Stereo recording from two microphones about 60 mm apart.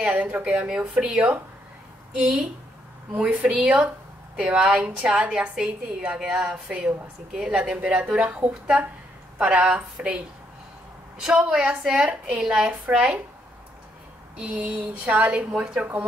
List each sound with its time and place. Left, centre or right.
0.0 s a woman's voice: right
14.3 s a woman's voice: centre